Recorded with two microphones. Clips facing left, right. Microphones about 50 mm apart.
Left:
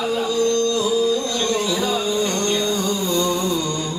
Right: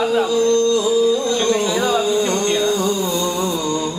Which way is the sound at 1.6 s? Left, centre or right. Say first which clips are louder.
Right 4 dB; centre.